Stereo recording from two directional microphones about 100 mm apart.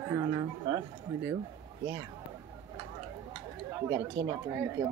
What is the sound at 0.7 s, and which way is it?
Speech, 60° right (ahead or behind).